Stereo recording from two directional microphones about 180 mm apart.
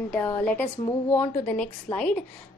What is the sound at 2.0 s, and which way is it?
Speech, 5° left (ahead or behind).